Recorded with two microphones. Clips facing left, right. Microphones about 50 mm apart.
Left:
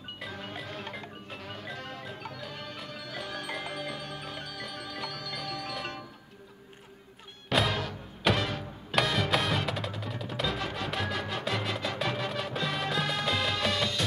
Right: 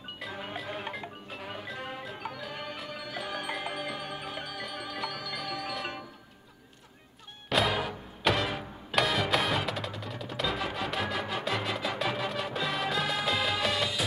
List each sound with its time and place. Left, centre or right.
0.3 s music: centre
7.4 s music: centre